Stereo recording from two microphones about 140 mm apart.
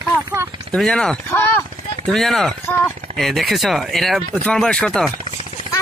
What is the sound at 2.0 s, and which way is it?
Speech, 5° left (ahead or behind).